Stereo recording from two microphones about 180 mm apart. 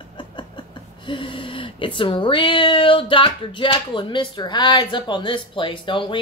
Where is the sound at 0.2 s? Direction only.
25° left (ahead or behind).